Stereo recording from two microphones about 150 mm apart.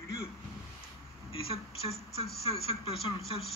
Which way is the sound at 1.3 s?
40° left (ahead or behind).